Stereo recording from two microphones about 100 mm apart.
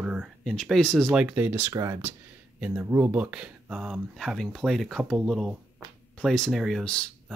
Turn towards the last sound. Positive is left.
turn(degrees=0)  # may be behind; listen again after turning